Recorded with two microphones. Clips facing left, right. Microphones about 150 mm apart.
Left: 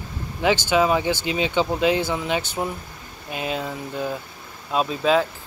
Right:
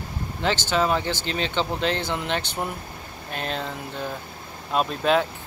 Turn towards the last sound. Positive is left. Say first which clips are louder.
# left 2 dB
turn(degrees=0)  # may be behind; listen again after turning